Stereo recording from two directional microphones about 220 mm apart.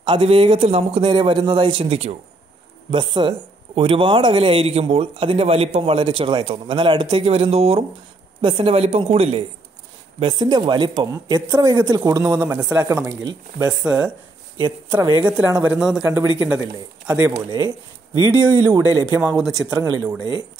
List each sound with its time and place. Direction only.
0.0 s speech: 25° right (ahead or behind)
13.8 s speech: 5° right (ahead or behind)
14.6 s speech: 15° right (ahead or behind)
17.3 s speech: 20° right (ahead or behind)